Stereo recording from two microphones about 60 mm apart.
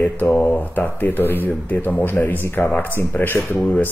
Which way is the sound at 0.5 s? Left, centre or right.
Left.